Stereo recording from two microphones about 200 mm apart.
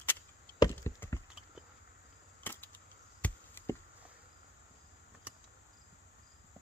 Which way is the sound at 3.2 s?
10° left (ahead or behind).